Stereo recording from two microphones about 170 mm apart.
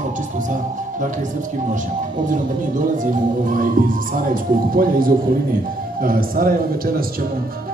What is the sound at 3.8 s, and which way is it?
A man's voice, 55° right (ahead or behind).